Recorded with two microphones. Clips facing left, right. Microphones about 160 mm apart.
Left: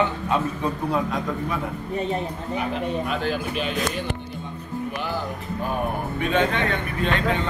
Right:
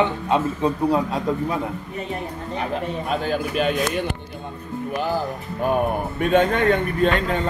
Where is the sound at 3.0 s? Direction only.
45° right (ahead or behind).